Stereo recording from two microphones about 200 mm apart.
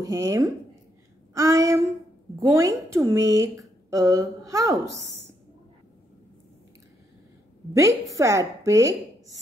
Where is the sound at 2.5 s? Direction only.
15° right (ahead or behind).